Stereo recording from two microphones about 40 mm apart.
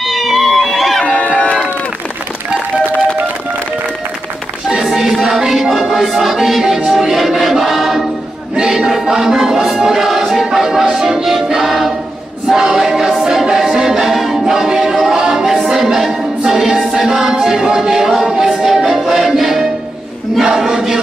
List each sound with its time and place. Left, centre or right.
0.0 s a sound: centre
1.0 s a sound: left
4.8 s music: centre
6.6 s music: centre
7.1 s music: centre
8.5 s music: centre
12.4 s choir: centre
14.5 s music: centre
18.2 s a capella: centre
19.0 s music: centre
20.4 s a sound: centre